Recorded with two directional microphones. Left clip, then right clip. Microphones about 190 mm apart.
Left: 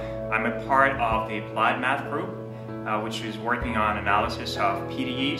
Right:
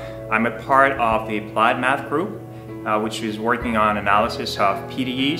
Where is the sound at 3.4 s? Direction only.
15° right (ahead or behind).